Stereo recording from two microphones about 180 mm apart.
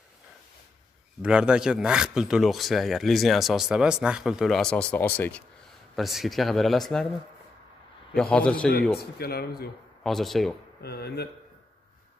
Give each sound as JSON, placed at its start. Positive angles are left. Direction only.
{"t": 1.2, "sound": "speech", "side_deg": -5}
{"t": 8.1, "sound": "speech", "side_deg": 5}
{"t": 9.2, "sound": "speech", "side_deg": 60}
{"t": 10.0, "sound": "speech", "side_deg": 0}
{"t": 10.8, "sound": "speech", "side_deg": 60}